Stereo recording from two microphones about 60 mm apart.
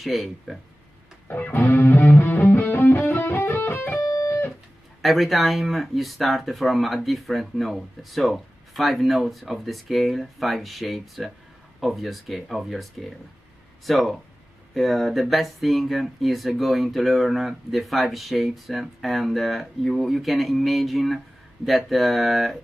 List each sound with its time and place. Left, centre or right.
0.0 s speech: centre
1.3 s music: left
4.0 s music: left
5.0 s speech: centre
13.8 s speech: centre